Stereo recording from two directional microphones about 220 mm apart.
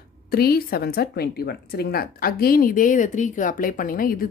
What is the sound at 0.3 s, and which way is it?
A woman's voice, 45° left (ahead or behind).